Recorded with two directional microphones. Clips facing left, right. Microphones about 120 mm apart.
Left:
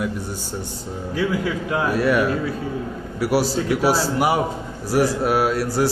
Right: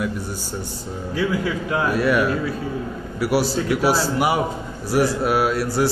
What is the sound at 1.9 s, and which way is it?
A man's voice, 40° left (ahead or behind).